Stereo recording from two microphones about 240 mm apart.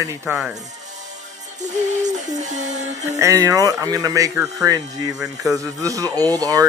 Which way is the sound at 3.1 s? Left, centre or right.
Centre.